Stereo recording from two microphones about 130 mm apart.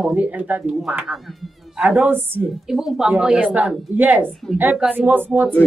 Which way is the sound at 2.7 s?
5° right (ahead or behind).